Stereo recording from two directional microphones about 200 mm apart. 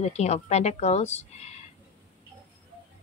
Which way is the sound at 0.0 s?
35° left (ahead or behind).